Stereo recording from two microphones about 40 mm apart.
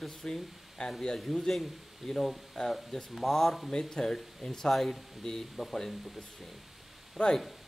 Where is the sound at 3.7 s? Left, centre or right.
Centre.